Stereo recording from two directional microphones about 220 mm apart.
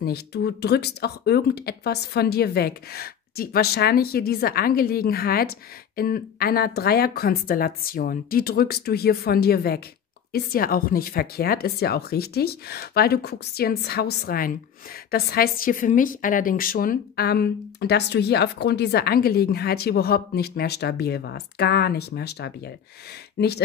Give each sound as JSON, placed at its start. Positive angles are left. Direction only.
{"t": 0.0, "sound": "a woman's voice", "side_deg": 45}